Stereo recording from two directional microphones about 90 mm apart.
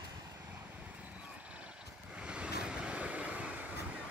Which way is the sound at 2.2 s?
10° right (ahead or behind).